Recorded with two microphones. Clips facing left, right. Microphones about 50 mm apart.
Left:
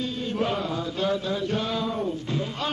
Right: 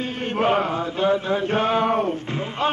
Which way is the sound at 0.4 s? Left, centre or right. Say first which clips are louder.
Right 8 dB; right.